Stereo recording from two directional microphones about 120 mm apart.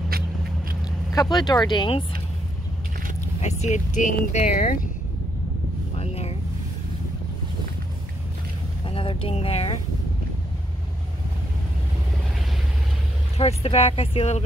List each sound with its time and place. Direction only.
1.1 s speech: 35° left (ahead or behind)
3.3 s speech: 70° left (ahead or behind); by 4.7 s 90° left
5.9 s vehicle: 60° left (ahead or behind)
8.8 s a sound: 50° left (ahead or behind)
13.4 s speech: 55° left (ahead or behind)